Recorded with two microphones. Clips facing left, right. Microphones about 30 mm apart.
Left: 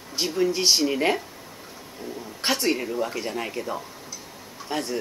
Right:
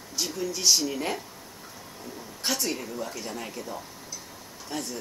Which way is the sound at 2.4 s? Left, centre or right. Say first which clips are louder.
Left 6 dB; left.